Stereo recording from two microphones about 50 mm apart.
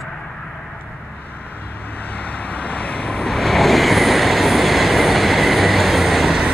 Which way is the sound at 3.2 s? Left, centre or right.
Centre.